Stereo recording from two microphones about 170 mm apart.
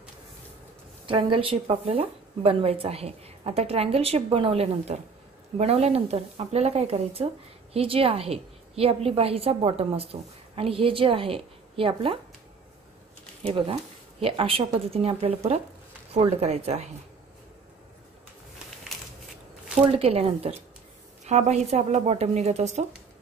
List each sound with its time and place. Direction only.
1.0 s a woman's voice: 30° right (ahead or behind)
14.2 s a woman's voice: 35° right (ahead or behind)
20.0 s a woman's voice: 35° right (ahead or behind)